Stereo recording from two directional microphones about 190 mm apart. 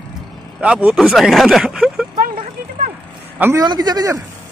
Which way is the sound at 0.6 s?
5° right (ahead or behind).